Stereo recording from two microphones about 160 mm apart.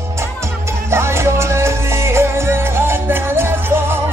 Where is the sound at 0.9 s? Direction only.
15° right (ahead or behind).